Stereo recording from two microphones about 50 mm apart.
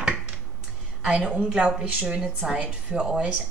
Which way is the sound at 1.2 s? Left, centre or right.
Centre.